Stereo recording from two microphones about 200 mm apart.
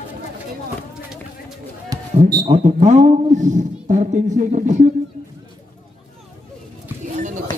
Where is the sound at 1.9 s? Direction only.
20° right (ahead or behind).